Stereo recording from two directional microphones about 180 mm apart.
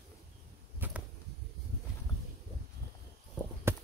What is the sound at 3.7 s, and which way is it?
Clip-clop, 15° right (ahead or behind).